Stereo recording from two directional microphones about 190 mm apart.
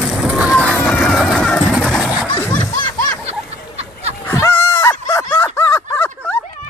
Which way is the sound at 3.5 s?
35° right (ahead or behind).